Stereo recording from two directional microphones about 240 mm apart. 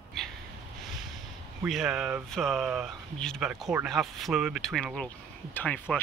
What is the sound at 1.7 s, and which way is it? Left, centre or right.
Speech, centre.